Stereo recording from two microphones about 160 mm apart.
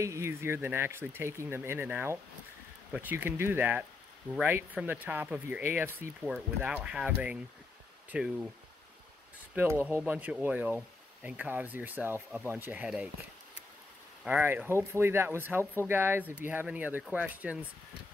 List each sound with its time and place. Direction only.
0.0 s speech: 15° right (ahead or behind)
9.6 s speech: 10° right (ahead or behind)
14.2 s speech: 10° right (ahead or behind)